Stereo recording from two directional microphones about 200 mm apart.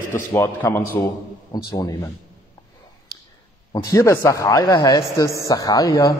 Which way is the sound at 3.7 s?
15° left (ahead or behind).